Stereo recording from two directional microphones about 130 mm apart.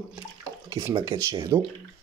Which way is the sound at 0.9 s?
25° right (ahead or behind).